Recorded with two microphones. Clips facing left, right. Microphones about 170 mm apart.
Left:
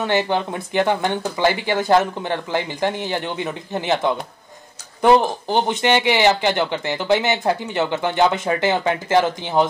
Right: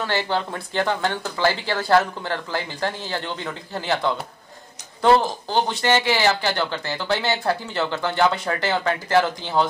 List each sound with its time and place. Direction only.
0.0 s speech: 20° left (ahead or behind)